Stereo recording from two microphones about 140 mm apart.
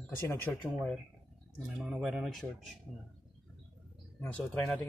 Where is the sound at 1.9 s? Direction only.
5° right (ahead or behind).